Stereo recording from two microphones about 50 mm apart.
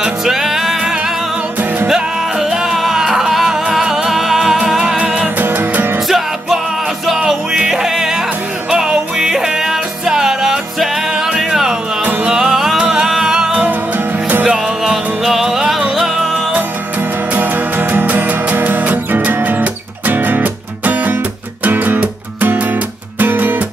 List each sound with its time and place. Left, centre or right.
0.0 s music: centre
5.4 s music: right
6.0 s music: centre
12.0 s music: right
12.4 s music: centre
13.7 s music: right
14.9 s music: centre
17.3 s music: right